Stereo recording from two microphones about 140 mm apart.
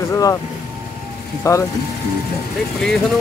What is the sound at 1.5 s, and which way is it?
Speech, 20° left (ahead or behind).